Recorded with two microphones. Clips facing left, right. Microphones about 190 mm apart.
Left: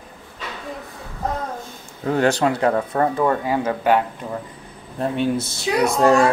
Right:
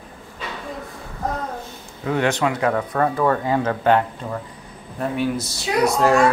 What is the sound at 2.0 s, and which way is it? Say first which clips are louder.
Speech: left 2 dB; 35° left (ahead or behind).